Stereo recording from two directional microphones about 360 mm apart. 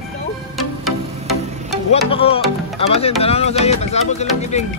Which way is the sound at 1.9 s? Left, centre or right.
Centre.